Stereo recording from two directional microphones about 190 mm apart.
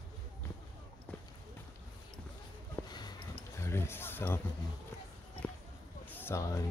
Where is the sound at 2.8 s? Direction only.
20° left (ahead or behind).